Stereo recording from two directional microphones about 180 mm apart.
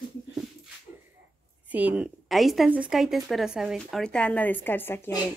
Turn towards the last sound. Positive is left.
turn(degrees=10)  # may be behind; listen again after turning